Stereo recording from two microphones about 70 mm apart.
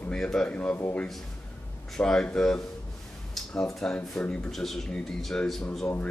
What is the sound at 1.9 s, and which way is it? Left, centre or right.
Speech, centre.